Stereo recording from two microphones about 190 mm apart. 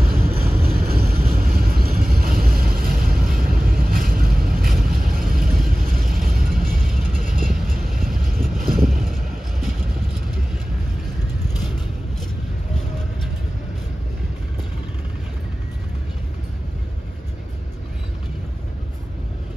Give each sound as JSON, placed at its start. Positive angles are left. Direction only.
{"t": 0.4, "sound": "vehicle", "side_deg": -10}
{"t": 0.7, "sound": "vehicle", "side_deg": -50}
{"t": 6.2, "sound": "music", "side_deg": -50}
{"t": 8.0, "sound": "vehicle", "side_deg": -50}
{"t": 8.9, "sound": "vehicle", "side_deg": 0}